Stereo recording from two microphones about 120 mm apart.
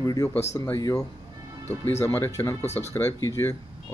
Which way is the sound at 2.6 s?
65° left (ahead or behind).